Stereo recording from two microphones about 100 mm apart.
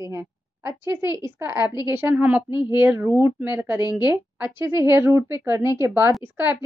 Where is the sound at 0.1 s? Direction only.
25° right (ahead or behind).